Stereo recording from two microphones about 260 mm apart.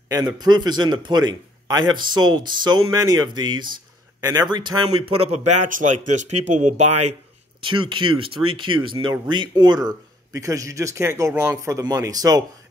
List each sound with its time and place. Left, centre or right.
0.1 s speech: centre